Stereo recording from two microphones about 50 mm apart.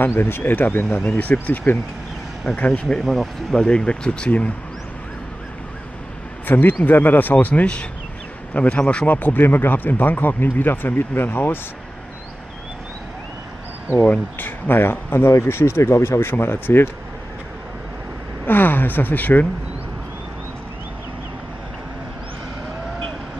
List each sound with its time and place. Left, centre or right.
0.2 s speech: left
2.5 s speech: left
3.0 s speech: centre
3.6 s speech: centre
6.4 s speech: left
9.0 s speech: left
14.4 s speech: left
18.5 s speech: left